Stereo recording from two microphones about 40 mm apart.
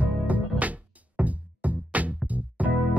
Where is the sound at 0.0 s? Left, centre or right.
Right.